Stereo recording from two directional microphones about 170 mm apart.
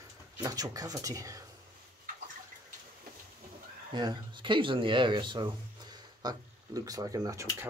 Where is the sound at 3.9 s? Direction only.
25° right (ahead or behind).